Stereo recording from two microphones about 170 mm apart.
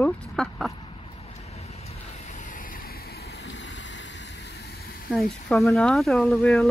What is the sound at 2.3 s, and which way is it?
Vehicle, 50° left (ahead or behind).